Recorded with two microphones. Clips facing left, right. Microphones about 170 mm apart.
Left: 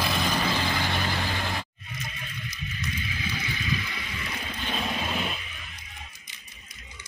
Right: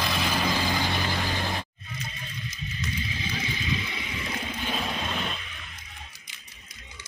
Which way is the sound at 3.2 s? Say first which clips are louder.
Right 1 dB; 25° right (ahead or behind).